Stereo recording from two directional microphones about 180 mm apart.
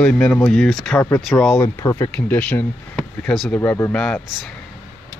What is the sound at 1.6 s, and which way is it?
Speech, 20° left (ahead or behind).